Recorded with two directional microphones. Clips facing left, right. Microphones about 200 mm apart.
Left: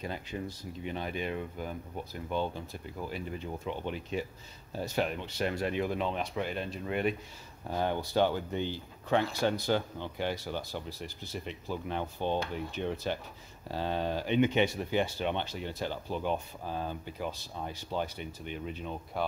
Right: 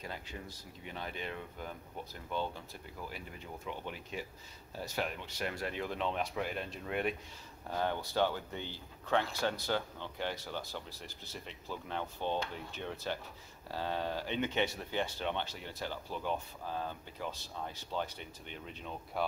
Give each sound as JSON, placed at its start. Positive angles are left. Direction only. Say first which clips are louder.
{"t": 0.0, "sound": "speech", "louder": "left 7 dB", "side_deg": 20}
{"t": 3.6, "sound": "speech", "louder": "left 4 dB", "side_deg": 25}
{"t": 7.7, "sound": "speech", "louder": "left 4 dB", "side_deg": 15}